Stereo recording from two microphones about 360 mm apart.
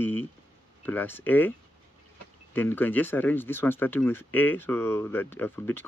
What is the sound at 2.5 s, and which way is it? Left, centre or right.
Speech, centre.